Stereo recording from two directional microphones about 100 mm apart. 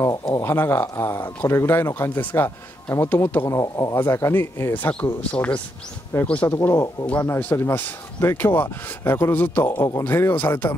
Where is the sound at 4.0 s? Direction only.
25° left (ahead or behind).